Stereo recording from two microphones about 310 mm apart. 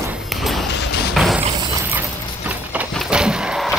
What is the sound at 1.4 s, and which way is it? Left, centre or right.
Mechanisms, centre.